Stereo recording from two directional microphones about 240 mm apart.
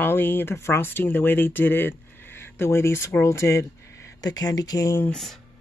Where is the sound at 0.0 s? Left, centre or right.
Centre.